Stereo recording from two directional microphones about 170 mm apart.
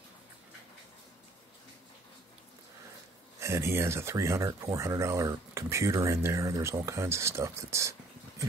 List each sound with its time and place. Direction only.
3.3 s speech: 15° right (ahead or behind)